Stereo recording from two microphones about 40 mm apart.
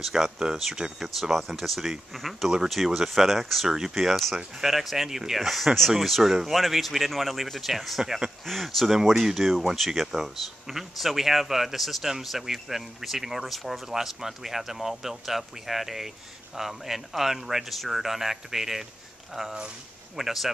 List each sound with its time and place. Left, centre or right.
0.0 s a man's voice: centre
3.6 s a man's voice: centre